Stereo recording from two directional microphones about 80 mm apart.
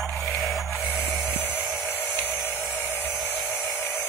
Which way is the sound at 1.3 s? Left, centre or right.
Left.